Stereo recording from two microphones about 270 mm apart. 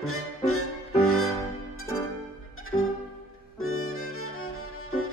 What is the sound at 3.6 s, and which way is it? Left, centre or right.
Music, left.